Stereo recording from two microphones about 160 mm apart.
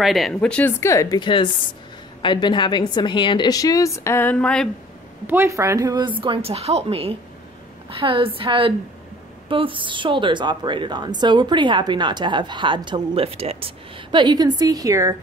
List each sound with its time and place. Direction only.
0.0 s a woman's voice: centre (ahead or behind)
5.2 s a woman's voice: 15° right (ahead or behind)
6.2 s a woman's voice: 35° right (ahead or behind); by 15.1 s 20° right (ahead or behind)